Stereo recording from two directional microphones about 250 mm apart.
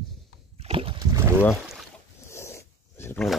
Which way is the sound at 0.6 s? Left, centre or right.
Right.